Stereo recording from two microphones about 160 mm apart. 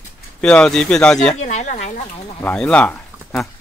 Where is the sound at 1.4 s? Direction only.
50° left (ahead or behind).